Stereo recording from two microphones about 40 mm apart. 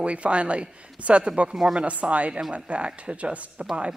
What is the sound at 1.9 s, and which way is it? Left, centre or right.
A woman's voice, right.